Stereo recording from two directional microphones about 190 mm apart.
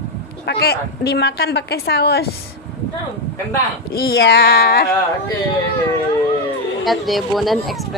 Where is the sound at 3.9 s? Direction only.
55° left (ahead or behind).